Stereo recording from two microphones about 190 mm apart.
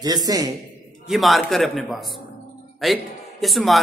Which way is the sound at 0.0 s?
20° right (ahead or behind).